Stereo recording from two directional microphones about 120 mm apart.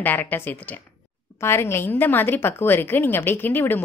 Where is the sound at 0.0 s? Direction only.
15° left (ahead or behind).